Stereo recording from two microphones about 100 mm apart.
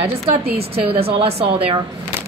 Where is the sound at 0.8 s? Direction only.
65° right (ahead or behind); by 1.7 s 85° right.